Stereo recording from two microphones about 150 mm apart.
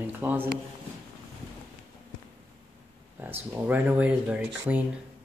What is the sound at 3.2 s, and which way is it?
Speech, 15° right (ahead or behind).